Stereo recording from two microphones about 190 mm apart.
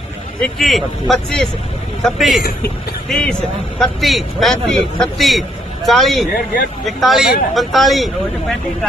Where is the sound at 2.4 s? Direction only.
55° left (ahead or behind).